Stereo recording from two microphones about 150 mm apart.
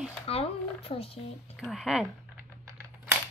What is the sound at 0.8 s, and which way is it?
Speech, 40° left (ahead or behind).